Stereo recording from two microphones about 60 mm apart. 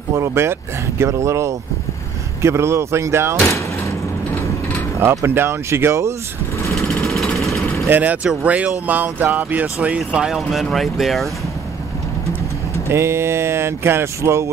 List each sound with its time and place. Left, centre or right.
0.1 s speech: right
5.2 s speech: right
7.3 s vehicle: centre
7.9 s speech: right
10.5 s speech: centre
12.8 s speech: right